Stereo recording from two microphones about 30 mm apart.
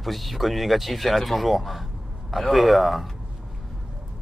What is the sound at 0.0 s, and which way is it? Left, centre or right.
Speech, centre.